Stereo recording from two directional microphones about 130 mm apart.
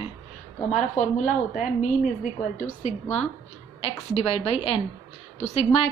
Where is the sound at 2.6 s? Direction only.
60° left (ahead or behind).